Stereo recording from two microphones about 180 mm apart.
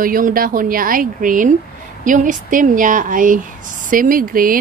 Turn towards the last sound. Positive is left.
turn(degrees=-50)  # may be behind; listen again after turning